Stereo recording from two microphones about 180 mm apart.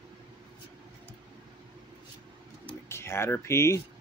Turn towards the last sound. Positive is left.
turn(degrees=15)  # may be behind; listen again after turning